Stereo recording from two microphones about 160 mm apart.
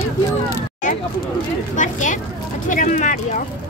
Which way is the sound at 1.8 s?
50° left (ahead or behind).